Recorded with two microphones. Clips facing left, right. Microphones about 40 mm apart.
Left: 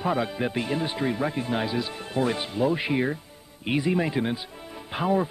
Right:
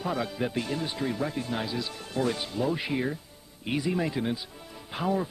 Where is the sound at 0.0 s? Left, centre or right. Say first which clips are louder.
Left 4 dB; left.